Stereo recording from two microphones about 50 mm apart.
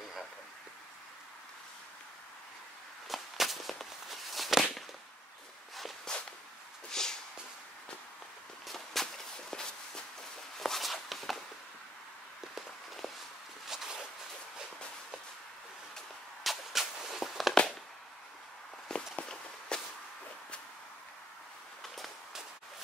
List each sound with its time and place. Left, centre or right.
3.1 s walk: centre
6.1 s a sound: centre
6.9 s snort: centre
8.6 s walk: centre
12.5 s walk: centre
13.7 s a sound: centre
16.4 s a sound: centre
18.9 s walk: centre
19.7 s whip: centre